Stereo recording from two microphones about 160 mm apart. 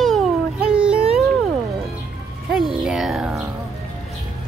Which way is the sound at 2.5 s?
5° right (ahead or behind).